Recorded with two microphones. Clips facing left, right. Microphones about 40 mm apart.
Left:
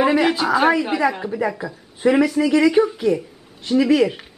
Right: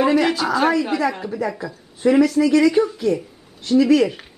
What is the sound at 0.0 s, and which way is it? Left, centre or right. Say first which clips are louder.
A man's voice: even; centre.